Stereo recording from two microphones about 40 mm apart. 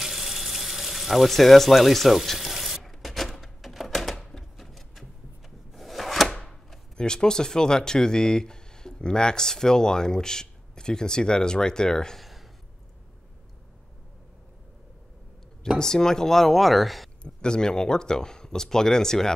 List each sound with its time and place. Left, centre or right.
0.0 s water: centre
4.6 s a sound: centre
5.7 s wood: centre
7.0 s speech: centre
12.2 s a sound: centre
15.8 s speech: centre
17.2 s speech: centre